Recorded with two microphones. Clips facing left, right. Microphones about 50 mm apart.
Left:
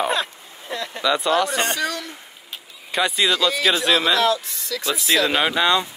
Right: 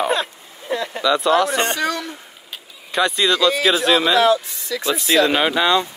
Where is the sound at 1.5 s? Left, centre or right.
Centre.